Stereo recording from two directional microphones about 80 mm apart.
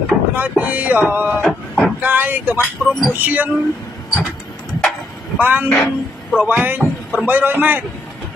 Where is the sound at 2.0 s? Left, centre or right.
Right.